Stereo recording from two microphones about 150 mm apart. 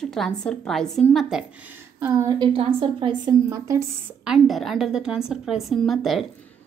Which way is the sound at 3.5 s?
20° right (ahead or behind).